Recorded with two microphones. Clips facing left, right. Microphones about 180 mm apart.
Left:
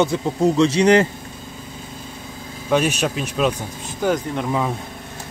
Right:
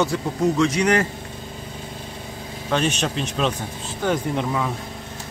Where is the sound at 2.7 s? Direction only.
10° left (ahead or behind).